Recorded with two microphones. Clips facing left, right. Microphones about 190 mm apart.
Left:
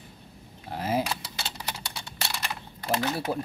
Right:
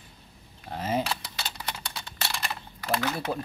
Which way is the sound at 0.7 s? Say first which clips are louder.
Left 1 dB; 5° left (ahead or behind).